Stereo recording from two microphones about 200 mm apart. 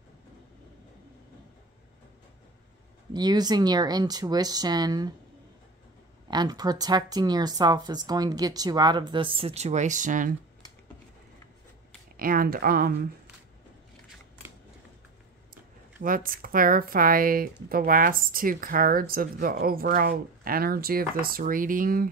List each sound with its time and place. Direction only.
3.1 s speech: 20° right (ahead or behind)
6.3 s speech: 20° right (ahead or behind); by 10.3 s 40° right (ahead or behind)
12.2 s speech: 45° right (ahead or behind)
16.0 s speech: 45° right (ahead or behind)